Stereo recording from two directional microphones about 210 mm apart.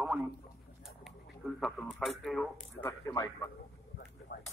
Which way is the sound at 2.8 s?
15° left (ahead or behind).